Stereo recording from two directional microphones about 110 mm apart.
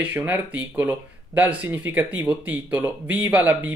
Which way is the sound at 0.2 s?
20° right (ahead or behind).